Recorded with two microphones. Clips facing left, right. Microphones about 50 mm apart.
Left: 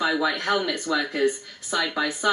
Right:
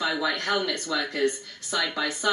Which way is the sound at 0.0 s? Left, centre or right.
Centre.